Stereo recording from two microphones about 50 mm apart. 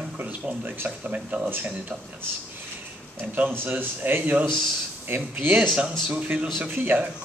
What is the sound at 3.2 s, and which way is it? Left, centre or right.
Speech, right.